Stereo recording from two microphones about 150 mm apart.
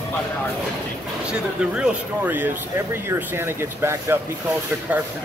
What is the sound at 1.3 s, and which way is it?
Speech, 5° right (ahead or behind).